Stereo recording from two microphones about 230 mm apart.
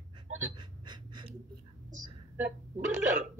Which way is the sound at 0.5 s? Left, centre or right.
Centre.